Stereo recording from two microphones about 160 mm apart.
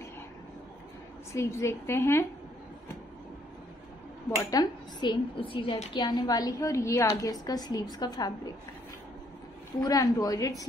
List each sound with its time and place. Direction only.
1.3 s a woman's voice: 15° left (ahead or behind)
4.4 s speech: 25° left (ahead or behind)
9.8 s speech: 25° left (ahead or behind)